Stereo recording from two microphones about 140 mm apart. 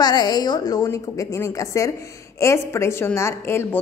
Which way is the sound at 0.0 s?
30° left (ahead or behind).